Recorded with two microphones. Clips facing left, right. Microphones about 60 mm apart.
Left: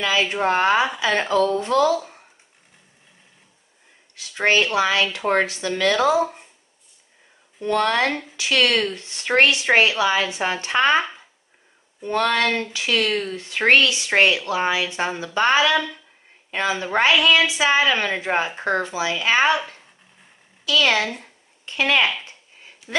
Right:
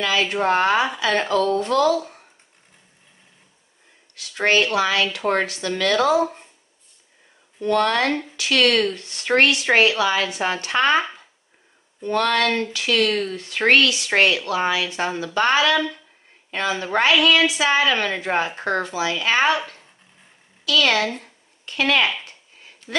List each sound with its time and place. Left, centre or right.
0.0 s a woman's voice: centre
4.1 s speech: left
7.6 s a woman's voice: centre
8.1 s speech: centre
8.4 s a woman's voice: centre
16.4 s a sound: centre
16.7 s a woman's voice: centre
20.6 s a woman's voice: centre
22.2 s a sound: centre